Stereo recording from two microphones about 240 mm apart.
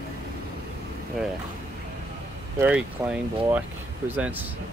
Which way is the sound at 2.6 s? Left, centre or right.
Centre.